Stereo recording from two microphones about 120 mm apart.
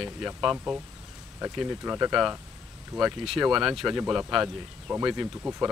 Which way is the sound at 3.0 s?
Centre (ahead or behind).